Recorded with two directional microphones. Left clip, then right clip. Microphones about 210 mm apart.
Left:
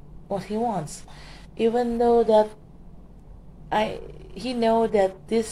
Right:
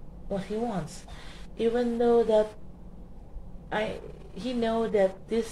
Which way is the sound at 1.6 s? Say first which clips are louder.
Left 4 dB; 35° left (ahead or behind).